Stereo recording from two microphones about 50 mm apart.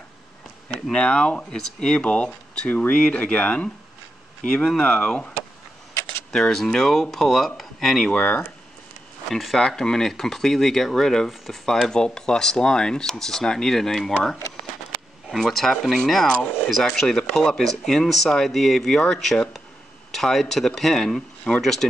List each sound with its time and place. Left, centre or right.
0.9 s speech: centre
6.3 s speech: centre
8.1 s speech: left
9.3 s speech: centre
9.6 s speech: centre